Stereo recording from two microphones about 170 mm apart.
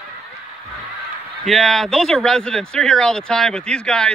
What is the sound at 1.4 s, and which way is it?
Speech, centre (ahead or behind).